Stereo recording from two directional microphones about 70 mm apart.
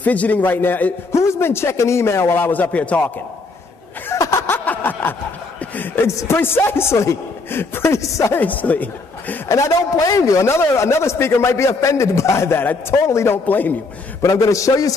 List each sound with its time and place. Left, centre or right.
0.0 s speech: left
1.1 s speech: left; by 3.0 s centre
4.2 s snicker: left
4.5 s snicker: left
5.6 s a sound: left
6.0 s a man's voice: left
6.3 s speech: left
8.4 s speech: left
9.5 s a man's voice: left
13.5 s speech: left
14.2 s a man's voice: left